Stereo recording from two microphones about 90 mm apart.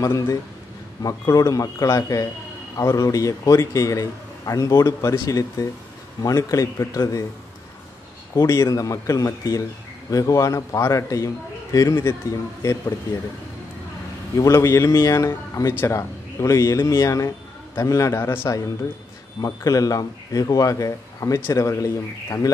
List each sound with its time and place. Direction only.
0.0 s a man's voice: 40° left (ahead or behind)
8.4 s a man's voice: 35° left (ahead or behind)
14.3 s a man's voice: 35° left (ahead or behind)
19.4 s a man's voice: 40° left (ahead or behind)